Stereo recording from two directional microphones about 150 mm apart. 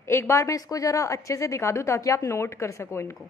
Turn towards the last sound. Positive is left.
turn(degrees=20)  # may be behind; listen again after turning